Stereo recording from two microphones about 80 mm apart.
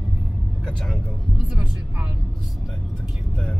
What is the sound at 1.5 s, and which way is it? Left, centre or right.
Speech, centre.